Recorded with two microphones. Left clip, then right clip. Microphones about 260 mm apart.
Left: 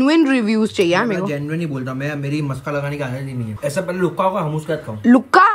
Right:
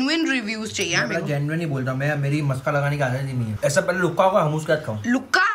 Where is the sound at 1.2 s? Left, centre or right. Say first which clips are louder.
Left 3 dB; centre.